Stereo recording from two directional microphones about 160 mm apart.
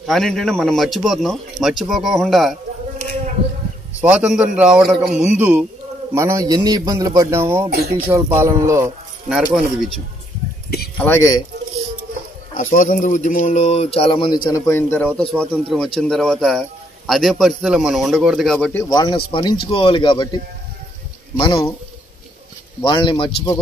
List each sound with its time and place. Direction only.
0.0 s a man's voice: centre (ahead or behind)
4.0 s a man's voice: 5° right (ahead or behind)
9.3 s a man's voice: 5° right (ahead or behind)
11.0 s speech: 15° left (ahead or behind)
12.5 s speech: 50° left (ahead or behind); by 14.6 s 25° left (ahead or behind)
14.7 s a man's voice: 15° left (ahead or behind)
18.9 s speech: 25° left (ahead or behind)
21.4 s speech: 30° left (ahead or behind)
22.8 s speech: 30° left (ahead or behind)